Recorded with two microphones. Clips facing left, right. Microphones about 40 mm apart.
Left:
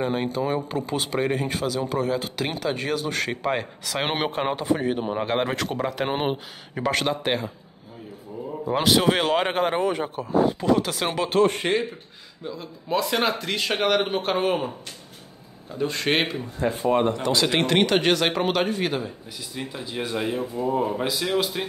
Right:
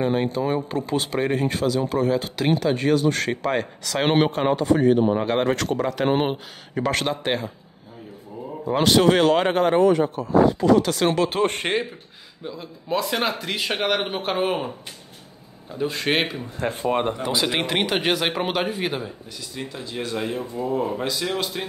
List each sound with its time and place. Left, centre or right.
0.0 s speech: centre
11.4 s speech: right
12.4 s speech: centre
15.7 s speech: centre
16.6 s speech: right
16.9 s speech: right
17.2 s speech: centre
19.6 s speech: centre